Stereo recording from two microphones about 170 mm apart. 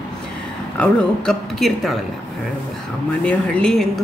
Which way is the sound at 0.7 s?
5° left (ahead or behind).